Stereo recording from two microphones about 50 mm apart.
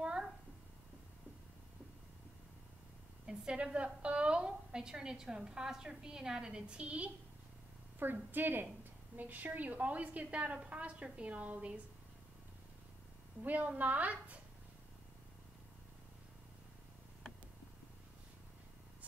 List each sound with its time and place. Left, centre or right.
0.0 s a sound: centre
3.3 s a woman's voice: centre
8.0 s a woman's voice: right
13.4 s a woman's voice: right